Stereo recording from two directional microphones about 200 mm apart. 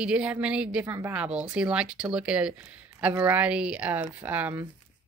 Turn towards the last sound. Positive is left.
turn(degrees=-10)  # may be behind; listen again after turning